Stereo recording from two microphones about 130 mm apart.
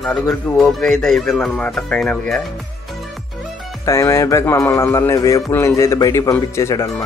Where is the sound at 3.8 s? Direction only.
25° left (ahead or behind).